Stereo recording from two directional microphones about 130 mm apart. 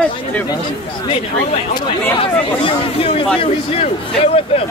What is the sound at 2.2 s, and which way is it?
Speech, 45° left (ahead or behind).